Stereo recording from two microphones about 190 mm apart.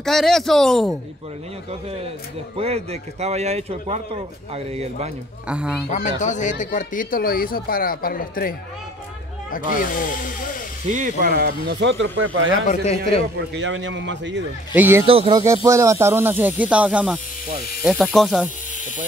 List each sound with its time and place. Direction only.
0.0 s speech: centre (ahead or behind)
2.5 s speech: 35° right (ahead or behind)
5.5 s speech: 5° right (ahead or behind)
5.9 s a man's voice: 40° left (ahead or behind)
9.8 s a man's voice: 45° left (ahead or behind)
10.9 s speech: 45° right (ahead or behind); by 12.5 s 90° right
12.5 s speech: 40° left (ahead or behind)
13.6 s a man's voice: 75° right (ahead or behind)
14.8 s speech: 10° right (ahead or behind)
15.0 s speech: 30° right (ahead or behind)
15.4 s speech: 15° right (ahead or behind); by 18.5 s centre (ahead or behind)